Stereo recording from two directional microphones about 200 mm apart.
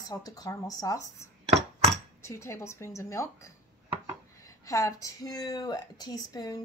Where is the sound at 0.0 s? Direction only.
20° left (ahead or behind).